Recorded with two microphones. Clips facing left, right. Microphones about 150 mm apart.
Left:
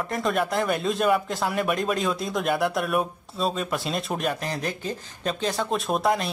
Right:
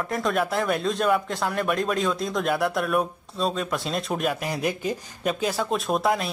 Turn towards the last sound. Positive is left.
turn(degrees=0)  # may be behind; listen again after turning